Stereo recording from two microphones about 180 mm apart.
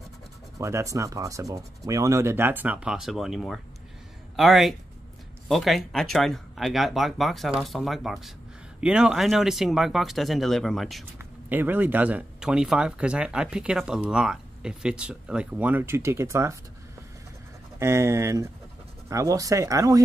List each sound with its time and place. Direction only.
0.6 s speech: 15° right (ahead or behind)
17.7 s speech: 15° right (ahead or behind)